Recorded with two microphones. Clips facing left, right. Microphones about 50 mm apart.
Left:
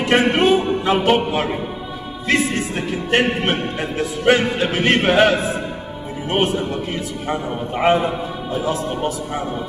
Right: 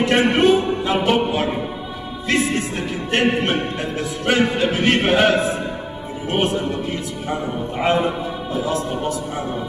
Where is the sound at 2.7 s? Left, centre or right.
Centre.